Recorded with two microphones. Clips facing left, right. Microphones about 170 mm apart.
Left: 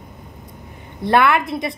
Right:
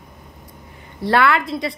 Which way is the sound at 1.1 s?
20° left (ahead or behind).